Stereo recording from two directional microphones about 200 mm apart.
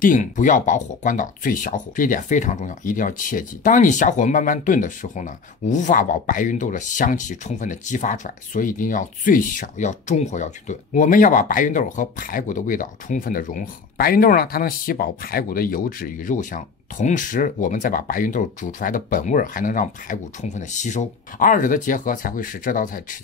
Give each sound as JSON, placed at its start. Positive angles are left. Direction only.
{"t": 0.0, "sound": "speech", "side_deg": 40}